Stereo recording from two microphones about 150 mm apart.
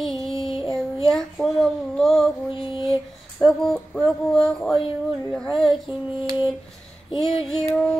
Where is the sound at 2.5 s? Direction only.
35° left (ahead or behind).